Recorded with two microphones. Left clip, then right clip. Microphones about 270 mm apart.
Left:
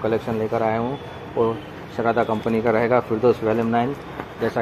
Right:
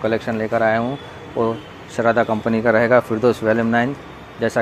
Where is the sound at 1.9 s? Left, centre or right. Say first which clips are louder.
Right 4 dB; right.